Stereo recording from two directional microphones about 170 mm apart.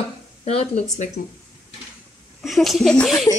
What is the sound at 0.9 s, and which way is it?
Speech, 45° left (ahead or behind).